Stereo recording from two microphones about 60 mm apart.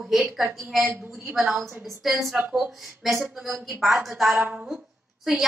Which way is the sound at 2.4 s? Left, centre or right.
Right.